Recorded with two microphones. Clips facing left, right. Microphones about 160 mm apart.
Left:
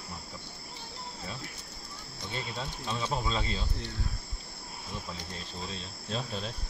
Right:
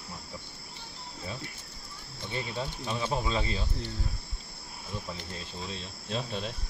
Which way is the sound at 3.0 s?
15° right (ahead or behind).